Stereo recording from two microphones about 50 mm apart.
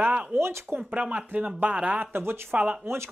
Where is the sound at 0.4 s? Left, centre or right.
Right.